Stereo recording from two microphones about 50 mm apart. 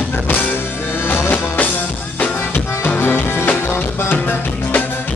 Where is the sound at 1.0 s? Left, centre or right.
Left.